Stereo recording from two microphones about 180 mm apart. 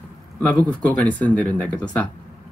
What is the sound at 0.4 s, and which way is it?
Speech, 5° left (ahead or behind).